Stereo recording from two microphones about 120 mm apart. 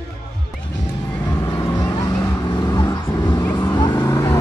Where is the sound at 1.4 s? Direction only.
35° left (ahead or behind).